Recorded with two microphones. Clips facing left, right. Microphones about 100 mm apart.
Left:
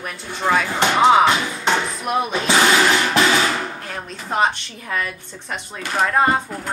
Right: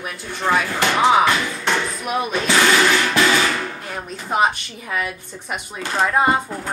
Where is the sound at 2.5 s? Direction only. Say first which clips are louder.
Even; 20° left (ahead or behind).